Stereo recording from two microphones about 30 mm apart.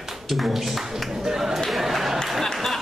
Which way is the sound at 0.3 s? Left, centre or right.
Centre.